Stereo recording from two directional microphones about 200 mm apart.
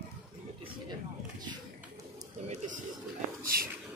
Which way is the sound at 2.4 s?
40° right (ahead or behind).